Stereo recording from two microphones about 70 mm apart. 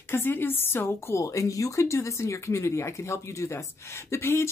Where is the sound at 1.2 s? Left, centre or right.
Left.